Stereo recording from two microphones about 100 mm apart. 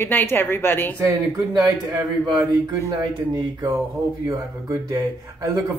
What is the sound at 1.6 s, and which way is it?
Speech, 40° right (ahead or behind).